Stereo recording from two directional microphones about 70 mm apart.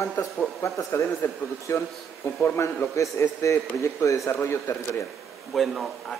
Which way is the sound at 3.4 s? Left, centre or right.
Left.